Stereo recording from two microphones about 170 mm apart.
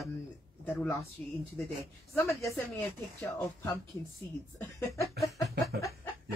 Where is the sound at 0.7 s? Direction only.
10° left (ahead or behind).